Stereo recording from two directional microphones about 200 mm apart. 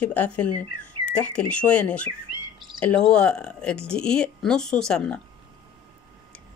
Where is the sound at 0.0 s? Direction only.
10° left (ahead or behind).